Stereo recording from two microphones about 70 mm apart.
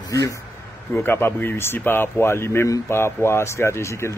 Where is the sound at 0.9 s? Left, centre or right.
Left.